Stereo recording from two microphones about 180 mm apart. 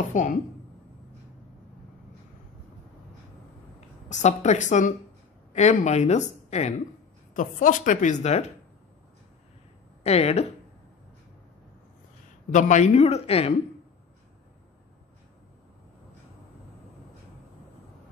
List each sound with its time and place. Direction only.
0.1 s a woman's voice: 45° left (ahead or behind)
4.1 s a woman's voice: 40° left (ahead or behind)
10.0 s speech: 35° left (ahead or behind)
12.4 s speech: 45° left (ahead or behind)